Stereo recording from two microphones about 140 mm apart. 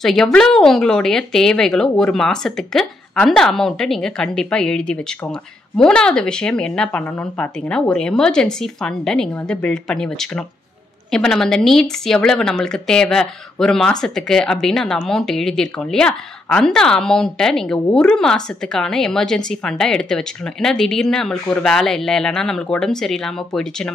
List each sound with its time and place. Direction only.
0.0 s speech: 5° left (ahead or behind)